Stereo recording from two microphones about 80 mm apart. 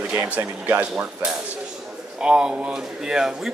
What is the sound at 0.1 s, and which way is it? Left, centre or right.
Speech, right.